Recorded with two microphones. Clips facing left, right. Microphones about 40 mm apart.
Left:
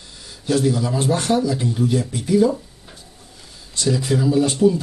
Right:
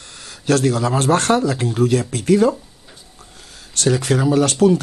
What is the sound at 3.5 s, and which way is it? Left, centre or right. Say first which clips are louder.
Speech: right 3 dB; right.